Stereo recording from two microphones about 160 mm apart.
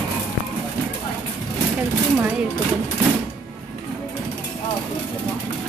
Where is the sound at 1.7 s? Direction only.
10° right (ahead or behind).